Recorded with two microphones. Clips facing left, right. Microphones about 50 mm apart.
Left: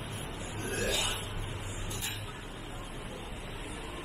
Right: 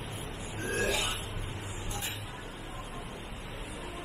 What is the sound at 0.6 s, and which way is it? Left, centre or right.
Burping, right.